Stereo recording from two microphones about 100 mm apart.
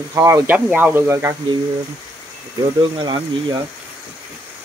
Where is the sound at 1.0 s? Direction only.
25° right (ahead or behind).